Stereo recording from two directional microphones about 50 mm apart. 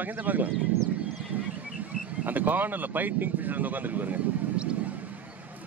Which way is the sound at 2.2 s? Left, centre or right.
Right.